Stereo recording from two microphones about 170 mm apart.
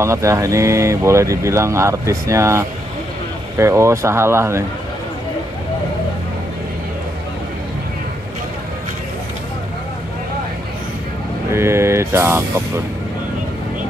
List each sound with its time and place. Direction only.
0.0 s speech: 15° right (ahead or behind)
11.5 s speech: 15° right (ahead or behind)